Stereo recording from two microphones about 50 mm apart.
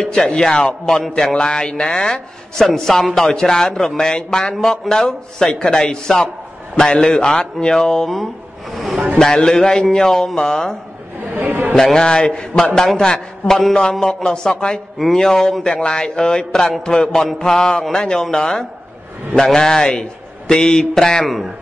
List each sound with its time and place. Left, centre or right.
0.0 s speech: centre
9.2 s speech: centre
11.3 s speech: right
11.7 s a man's voice: centre